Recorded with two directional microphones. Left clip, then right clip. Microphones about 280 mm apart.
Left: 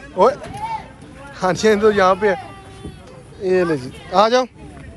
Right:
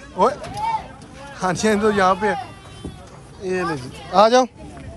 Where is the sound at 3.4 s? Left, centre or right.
Centre.